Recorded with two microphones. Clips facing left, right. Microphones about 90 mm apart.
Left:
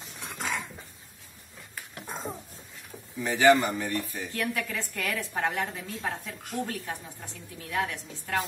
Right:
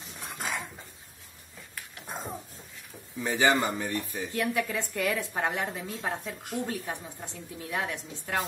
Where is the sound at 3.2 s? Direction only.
20° right (ahead or behind).